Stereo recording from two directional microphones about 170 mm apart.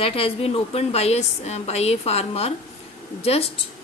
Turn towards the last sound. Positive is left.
turn(degrees=35)  # may be behind; listen again after turning